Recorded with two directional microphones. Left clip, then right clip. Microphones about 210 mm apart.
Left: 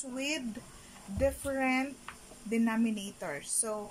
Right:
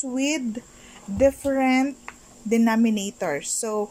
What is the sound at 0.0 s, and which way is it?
A woman's voice, 35° right (ahead or behind).